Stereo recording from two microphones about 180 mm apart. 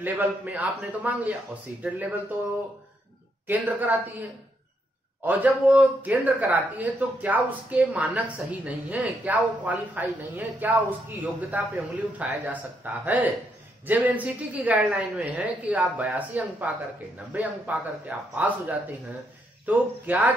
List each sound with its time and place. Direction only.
0.0 s a man's voice: 10° right (ahead or behind)
3.4 s a man's voice: 10° right (ahead or behind)
5.2 s a man's voice: 10° right (ahead or behind)